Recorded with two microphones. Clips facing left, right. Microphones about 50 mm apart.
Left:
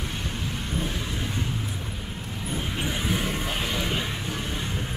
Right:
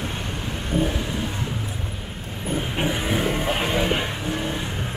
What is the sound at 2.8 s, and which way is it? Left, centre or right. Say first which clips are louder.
Vehicle: right 5 dB; right.